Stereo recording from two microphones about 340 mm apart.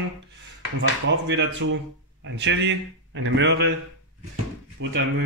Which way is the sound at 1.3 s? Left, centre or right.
Right.